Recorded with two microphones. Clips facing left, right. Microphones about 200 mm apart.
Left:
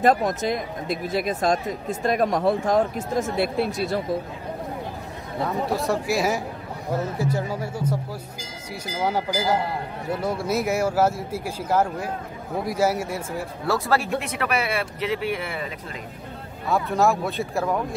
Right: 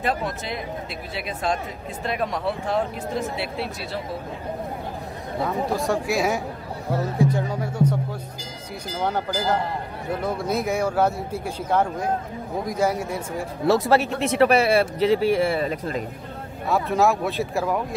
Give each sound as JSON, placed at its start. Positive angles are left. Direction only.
{"t": 0.0, "sound": "speech", "side_deg": 45}
{"t": 5.4, "sound": "speech", "side_deg": 0}
{"t": 13.7, "sound": "speech", "side_deg": -20}
{"t": 16.9, "sound": "speech", "side_deg": 0}